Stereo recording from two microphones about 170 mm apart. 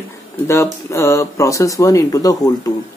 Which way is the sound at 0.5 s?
15° left (ahead or behind).